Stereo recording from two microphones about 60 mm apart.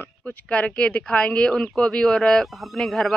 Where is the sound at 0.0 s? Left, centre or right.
Left.